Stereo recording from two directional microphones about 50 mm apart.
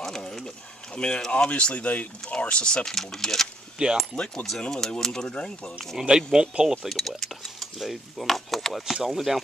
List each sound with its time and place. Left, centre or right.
0.0 s a sound: centre
0.9 s speech: centre
2.9 s speech: centre
3.7 s speech: centre
4.5 s speech: centre
5.9 s speech: centre
6.9 s speech: centre